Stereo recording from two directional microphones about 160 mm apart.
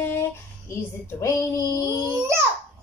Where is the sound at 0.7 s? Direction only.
15° left (ahead or behind).